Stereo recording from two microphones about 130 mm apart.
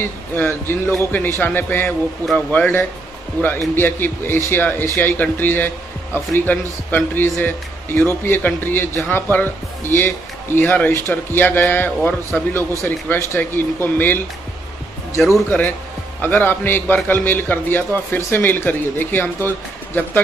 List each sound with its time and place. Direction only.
0.0 s speech: 15° left (ahead or behind)
15.3 s speech: 10° left (ahead or behind)